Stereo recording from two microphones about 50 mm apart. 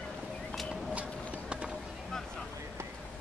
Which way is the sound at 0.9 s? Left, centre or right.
Right.